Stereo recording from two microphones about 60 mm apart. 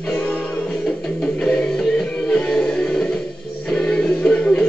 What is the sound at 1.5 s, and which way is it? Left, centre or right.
Music, centre.